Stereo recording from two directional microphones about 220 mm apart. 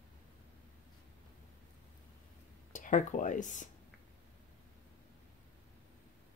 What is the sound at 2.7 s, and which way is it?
Speech, 35° left (ahead or behind).